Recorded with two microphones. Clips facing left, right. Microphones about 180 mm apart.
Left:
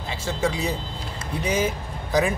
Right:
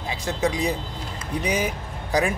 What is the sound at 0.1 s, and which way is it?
Speech, 15° right (ahead or behind).